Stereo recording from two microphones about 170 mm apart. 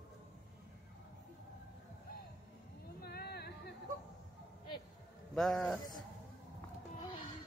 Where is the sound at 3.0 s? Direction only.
70° left (ahead or behind).